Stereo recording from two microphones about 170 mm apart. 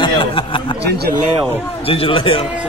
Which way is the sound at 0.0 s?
30° left (ahead or behind).